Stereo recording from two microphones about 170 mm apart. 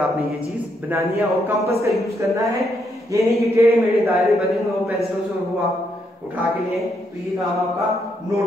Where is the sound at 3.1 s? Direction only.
20° right (ahead or behind).